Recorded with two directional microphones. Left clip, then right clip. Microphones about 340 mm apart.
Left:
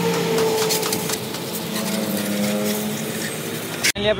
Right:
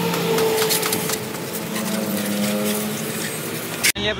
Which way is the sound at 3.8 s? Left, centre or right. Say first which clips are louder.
Left 1 dB; centre.